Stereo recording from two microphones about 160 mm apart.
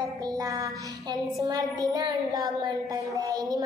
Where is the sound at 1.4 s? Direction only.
25° right (ahead or behind).